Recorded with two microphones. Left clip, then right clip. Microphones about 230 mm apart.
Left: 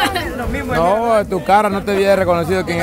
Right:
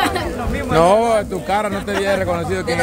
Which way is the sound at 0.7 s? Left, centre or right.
Centre.